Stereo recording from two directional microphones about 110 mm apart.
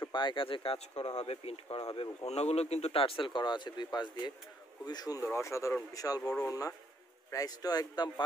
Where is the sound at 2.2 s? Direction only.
75° left (ahead or behind); by 8.1 s 40° left (ahead or behind).